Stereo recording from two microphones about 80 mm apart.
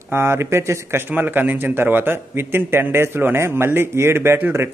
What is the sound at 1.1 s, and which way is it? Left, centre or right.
A man's voice, right.